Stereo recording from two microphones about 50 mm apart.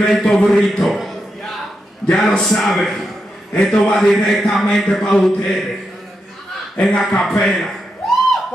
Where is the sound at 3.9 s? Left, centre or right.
Centre.